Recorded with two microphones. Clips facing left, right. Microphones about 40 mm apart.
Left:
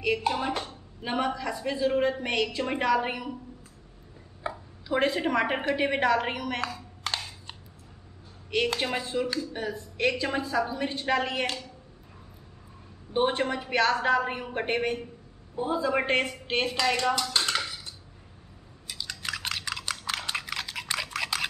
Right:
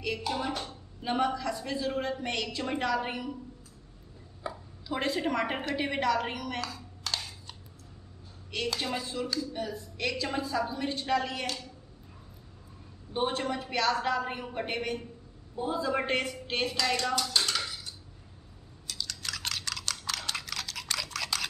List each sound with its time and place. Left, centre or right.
0.0 s speech: left
4.4 s a sound: left
8.5 s speech: left
13.1 s speech: left
17.3 s dishes: left
18.9 s typing: centre